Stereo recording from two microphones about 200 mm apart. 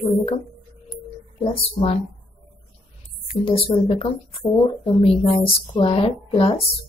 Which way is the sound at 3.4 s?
30° left (ahead or behind).